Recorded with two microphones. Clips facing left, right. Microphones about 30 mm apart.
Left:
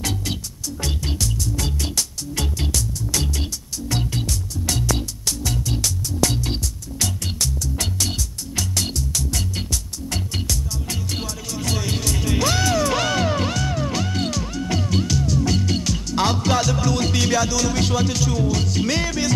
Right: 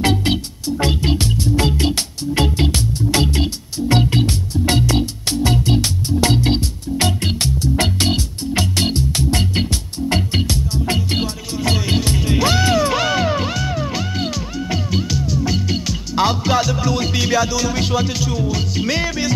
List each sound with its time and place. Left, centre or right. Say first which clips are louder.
0.0 s music: right 9 dB; right
11.7 s music: right 5 dB; right
12.7 s music: right 3 dB; centre